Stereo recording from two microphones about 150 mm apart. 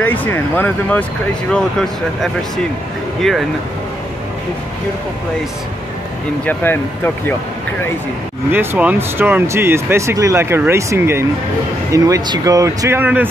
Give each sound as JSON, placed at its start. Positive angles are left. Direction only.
{"t": 0.0, "sound": "speech", "side_deg": 10}
{"t": 6.4, "sound": "speech", "side_deg": 15}
{"t": 8.5, "sound": "speech", "side_deg": -10}